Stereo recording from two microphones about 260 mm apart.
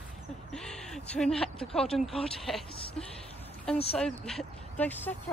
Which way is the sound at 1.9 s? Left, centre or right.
Centre.